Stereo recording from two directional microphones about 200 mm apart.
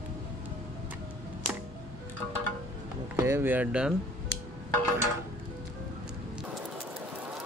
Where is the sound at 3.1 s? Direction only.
10° right (ahead or behind).